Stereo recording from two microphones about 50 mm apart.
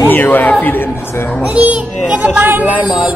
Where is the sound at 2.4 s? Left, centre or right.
Right.